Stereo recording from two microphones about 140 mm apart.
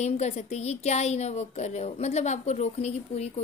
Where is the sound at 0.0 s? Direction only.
55° left (ahead or behind).